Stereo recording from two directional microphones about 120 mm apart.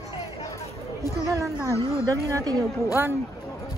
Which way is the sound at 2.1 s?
25° right (ahead or behind).